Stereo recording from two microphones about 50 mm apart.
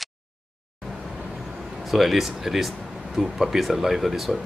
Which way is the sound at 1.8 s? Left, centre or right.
Centre.